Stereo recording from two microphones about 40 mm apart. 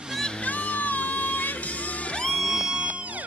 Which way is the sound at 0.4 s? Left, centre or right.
Left.